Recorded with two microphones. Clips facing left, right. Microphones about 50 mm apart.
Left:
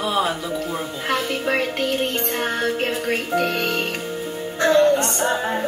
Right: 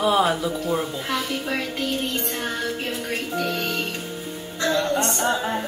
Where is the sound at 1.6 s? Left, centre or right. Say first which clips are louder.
Left 4 dB; left.